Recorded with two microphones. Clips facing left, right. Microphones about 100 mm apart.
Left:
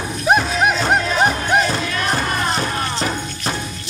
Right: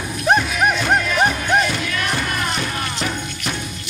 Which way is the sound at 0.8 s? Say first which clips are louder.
Left 1 dB; 35° left (ahead or behind).